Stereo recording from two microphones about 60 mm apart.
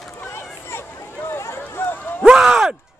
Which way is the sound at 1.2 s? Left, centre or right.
Left.